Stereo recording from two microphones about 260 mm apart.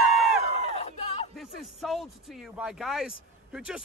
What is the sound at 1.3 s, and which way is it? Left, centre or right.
Music, centre.